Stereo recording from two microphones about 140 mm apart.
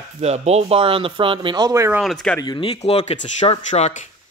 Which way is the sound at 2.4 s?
30° left (ahead or behind).